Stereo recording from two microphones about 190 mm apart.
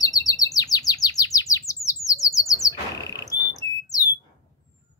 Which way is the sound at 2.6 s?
15° left (ahead or behind).